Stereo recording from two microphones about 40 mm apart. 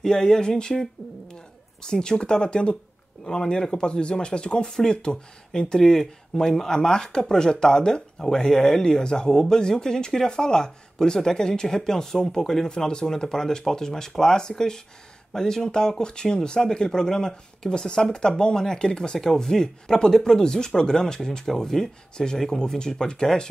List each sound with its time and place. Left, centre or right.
0.0 s speech: centre
12.6 s speech: left